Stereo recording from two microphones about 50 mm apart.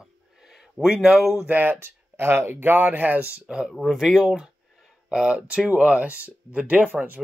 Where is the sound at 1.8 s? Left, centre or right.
Right.